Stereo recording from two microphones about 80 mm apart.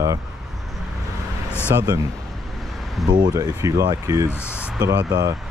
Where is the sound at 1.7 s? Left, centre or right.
Right.